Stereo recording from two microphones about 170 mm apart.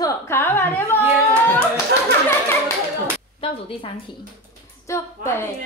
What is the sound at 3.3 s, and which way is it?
Speech, 30° left (ahead or behind).